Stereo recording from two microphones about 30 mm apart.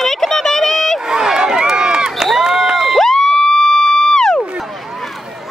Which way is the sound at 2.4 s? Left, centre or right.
Centre.